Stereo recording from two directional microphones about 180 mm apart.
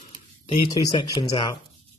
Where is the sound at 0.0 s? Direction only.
30° left (ahead or behind).